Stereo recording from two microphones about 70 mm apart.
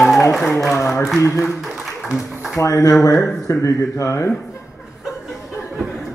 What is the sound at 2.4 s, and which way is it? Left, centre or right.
Mantra, left.